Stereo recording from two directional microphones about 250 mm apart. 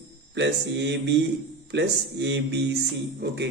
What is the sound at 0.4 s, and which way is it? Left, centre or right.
A man's voice, right.